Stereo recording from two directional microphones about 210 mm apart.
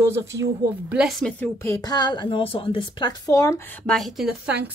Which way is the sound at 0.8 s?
5° right (ahead or behind).